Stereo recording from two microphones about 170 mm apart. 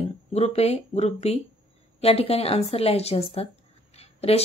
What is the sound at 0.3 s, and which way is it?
Speech, 40° left (ahead or behind).